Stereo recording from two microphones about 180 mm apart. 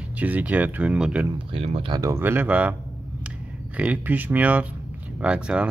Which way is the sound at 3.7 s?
10° right (ahead or behind).